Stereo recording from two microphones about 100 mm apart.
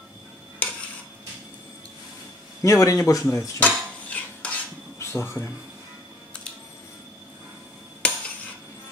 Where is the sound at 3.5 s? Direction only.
15° left (ahead or behind).